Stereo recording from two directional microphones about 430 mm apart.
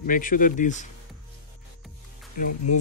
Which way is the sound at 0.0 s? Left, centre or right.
Centre.